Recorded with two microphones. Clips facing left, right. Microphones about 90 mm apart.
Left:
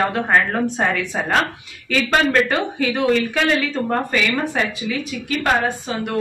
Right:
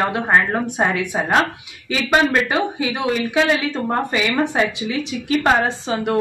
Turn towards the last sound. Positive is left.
turn(degrees=-25)  # may be behind; listen again after turning